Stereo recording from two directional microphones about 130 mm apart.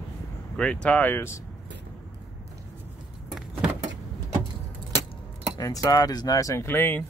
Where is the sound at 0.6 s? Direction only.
10° left (ahead or behind).